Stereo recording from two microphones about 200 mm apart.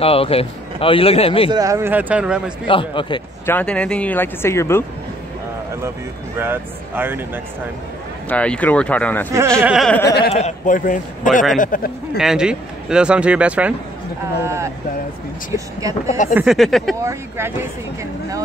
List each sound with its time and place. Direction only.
0.0 s a man's voice: 30° left (ahead or behind)
1.5 s speech: 15° right (ahead or behind)
2.6 s a man's voice: 25° left (ahead or behind)
3.4 s speech: 10° left (ahead or behind)
6.3 s speech: 10° right (ahead or behind)
8.3 s a man's voice: 5° left (ahead or behind)
10.0 s speech: 55° left (ahead or behind)
10.3 s speech: 35° left (ahead or behind)
12.2 s a man's voice: 5° right (ahead or behind)
16.1 s speech: 40° left (ahead or behind)
16.3 s a man's voice: centre (ahead or behind)
17.0 s speech: 15° right (ahead or behind)